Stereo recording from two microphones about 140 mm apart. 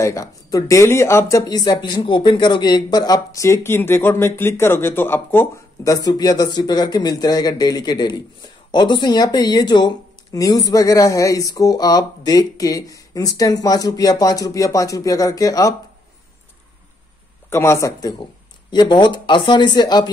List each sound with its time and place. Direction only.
0.0 s speech: 25° left (ahead or behind)
17.5 s speech: 20° left (ahead or behind)